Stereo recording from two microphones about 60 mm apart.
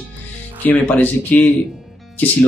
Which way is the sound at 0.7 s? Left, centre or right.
Left.